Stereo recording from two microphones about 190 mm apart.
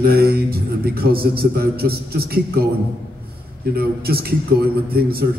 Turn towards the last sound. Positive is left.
turn(degrees=-55)  # may be behind; listen again after turning